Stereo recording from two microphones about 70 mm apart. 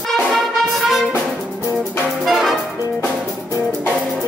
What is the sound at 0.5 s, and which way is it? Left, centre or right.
Music, centre.